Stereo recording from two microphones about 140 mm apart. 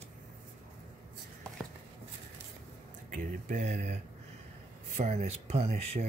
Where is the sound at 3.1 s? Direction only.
65° right (ahead or behind).